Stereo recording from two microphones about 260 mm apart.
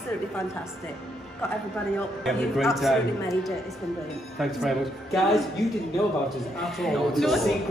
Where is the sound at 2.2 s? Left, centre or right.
Centre.